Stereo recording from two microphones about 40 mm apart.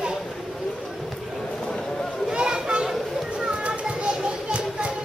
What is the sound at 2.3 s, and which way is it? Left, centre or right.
Chatter, centre.